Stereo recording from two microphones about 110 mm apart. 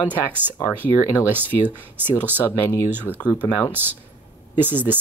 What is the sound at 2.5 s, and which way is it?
Speech, 20° left (ahead or behind).